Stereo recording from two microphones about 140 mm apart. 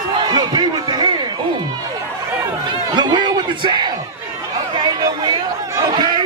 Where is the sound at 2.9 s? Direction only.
30° right (ahead or behind).